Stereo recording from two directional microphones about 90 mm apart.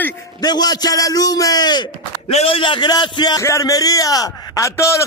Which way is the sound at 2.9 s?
55° left (ahead or behind).